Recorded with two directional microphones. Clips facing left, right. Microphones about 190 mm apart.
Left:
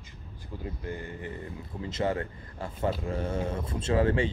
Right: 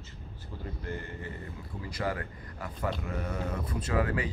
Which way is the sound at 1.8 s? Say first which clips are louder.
Left 5 dB; 25° left (ahead or behind).